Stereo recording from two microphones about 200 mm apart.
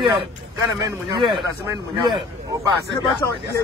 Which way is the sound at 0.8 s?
20° right (ahead or behind).